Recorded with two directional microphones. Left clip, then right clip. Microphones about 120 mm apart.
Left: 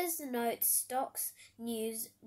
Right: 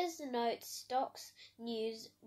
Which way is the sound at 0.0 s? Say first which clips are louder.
Left 1 dB; 20° left (ahead or behind).